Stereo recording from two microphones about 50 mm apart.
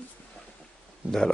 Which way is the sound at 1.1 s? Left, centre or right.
Centre.